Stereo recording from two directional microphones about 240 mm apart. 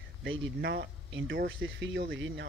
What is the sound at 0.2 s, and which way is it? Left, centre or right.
Speech, right.